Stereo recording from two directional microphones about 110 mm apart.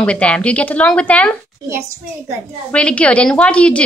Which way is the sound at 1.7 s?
25° right (ahead or behind).